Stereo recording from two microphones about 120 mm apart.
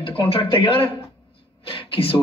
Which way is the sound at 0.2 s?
45° left (ahead or behind).